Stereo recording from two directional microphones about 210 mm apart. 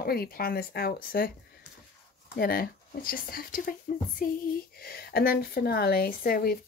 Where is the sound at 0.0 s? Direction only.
45° left (ahead or behind).